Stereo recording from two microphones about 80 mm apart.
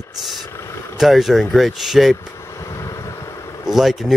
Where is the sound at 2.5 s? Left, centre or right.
Left.